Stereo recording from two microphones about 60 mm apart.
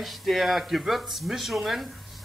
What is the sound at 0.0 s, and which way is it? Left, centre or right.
Speech, centre.